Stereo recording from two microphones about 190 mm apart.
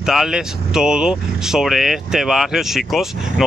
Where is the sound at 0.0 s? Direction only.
Centre (ahead or behind).